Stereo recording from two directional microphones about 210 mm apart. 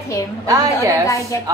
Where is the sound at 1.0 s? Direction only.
15° left (ahead or behind).